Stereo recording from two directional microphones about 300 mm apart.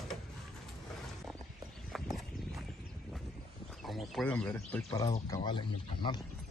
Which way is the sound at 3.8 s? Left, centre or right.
Centre.